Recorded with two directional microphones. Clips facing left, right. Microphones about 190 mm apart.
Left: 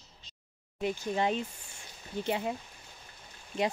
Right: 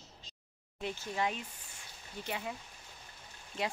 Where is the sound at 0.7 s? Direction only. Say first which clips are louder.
Left 7 dB; 15° left (ahead or behind).